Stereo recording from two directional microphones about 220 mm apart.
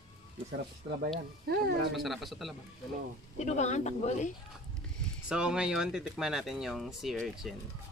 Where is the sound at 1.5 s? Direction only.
50° right (ahead or behind).